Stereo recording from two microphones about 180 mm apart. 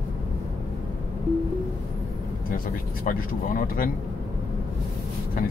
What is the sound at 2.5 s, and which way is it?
Speech, 50° left (ahead or behind).